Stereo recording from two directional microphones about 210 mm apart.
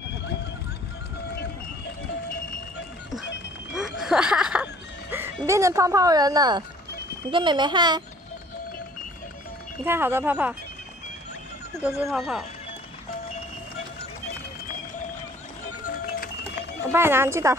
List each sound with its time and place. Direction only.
1.3 s vehicle: 50° left (ahead or behind)
3.7 s snicker: centre (ahead or behind)
5.5 s speech: 15° right (ahead or behind)
9.8 s speech: 10° right (ahead or behind)
11.8 s speech: 10° right (ahead or behind)
15.8 s music: 45° left (ahead or behind)
16.9 s speech: 10° right (ahead or behind)